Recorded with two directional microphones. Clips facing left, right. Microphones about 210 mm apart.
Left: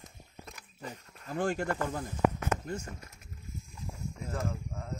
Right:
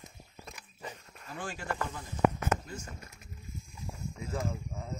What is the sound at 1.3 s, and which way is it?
Speech, 55° left (ahead or behind).